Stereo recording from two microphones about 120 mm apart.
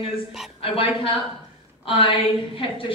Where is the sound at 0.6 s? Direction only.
50° left (ahead or behind).